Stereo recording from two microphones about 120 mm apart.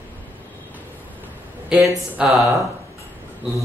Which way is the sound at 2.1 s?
5° right (ahead or behind).